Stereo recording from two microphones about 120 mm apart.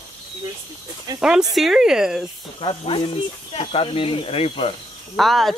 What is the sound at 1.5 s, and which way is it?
Speech, centre (ahead or behind).